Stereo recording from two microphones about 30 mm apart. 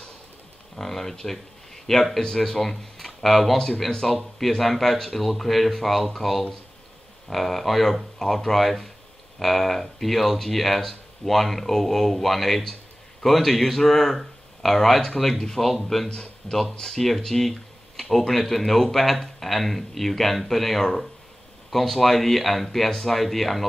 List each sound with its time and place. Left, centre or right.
0.7 s speech: centre
2.7 s a sound: centre
3.3 s speech: centre
16.1 s speech: left
16.8 s speech: centre